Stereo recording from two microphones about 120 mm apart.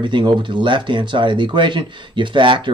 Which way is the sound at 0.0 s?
40° right (ahead or behind).